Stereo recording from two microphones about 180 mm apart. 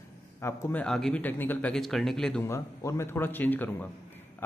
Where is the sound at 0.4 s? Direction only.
15° left (ahead or behind).